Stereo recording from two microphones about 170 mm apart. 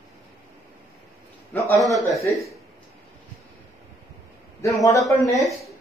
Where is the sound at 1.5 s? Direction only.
10° left (ahead or behind).